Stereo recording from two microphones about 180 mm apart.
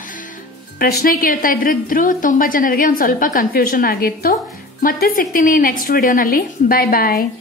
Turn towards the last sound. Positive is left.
turn(degrees=60)  # may be behind; listen again after turning